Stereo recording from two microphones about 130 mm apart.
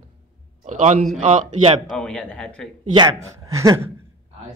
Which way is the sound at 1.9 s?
5° left (ahead or behind).